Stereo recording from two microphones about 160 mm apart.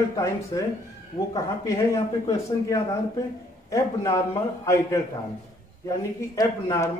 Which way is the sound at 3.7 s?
20° left (ahead or behind).